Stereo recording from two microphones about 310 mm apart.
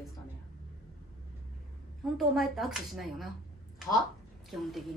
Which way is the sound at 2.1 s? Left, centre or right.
Centre.